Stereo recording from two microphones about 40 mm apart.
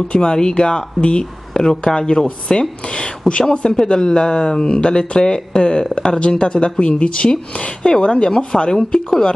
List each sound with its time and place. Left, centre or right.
0.1 s speech: centre